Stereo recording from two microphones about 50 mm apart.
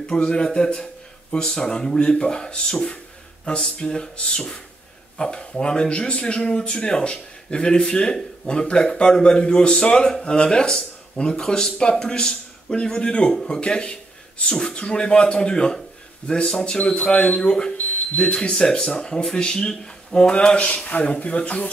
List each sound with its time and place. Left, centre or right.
0.0 s a man's voice: centre
17.7 s a man's voice: left